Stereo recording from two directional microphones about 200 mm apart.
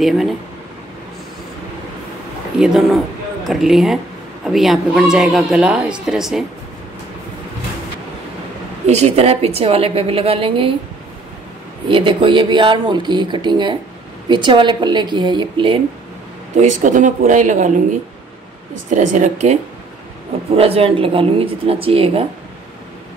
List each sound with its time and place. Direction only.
0.0 s speech: centre (ahead or behind)
2.6 s speech: centre (ahead or behind)
8.8 s a woman's voice: 35° right (ahead or behind)
11.9 s a woman's voice: 25° right (ahead or behind)
16.5 s speech: 40° right (ahead or behind)
18.9 s a woman's voice: 40° right (ahead or behind)